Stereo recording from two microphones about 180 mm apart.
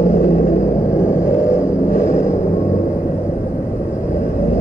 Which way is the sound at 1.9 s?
40° left (ahead or behind).